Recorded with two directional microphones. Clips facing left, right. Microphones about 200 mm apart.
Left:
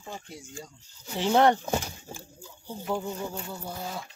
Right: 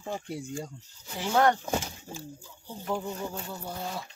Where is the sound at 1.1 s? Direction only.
25° left (ahead or behind).